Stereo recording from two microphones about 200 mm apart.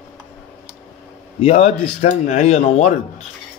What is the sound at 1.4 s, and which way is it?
Speech, 35° left (ahead or behind).